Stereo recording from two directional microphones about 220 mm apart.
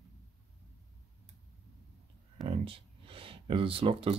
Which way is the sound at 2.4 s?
25° right (ahead or behind).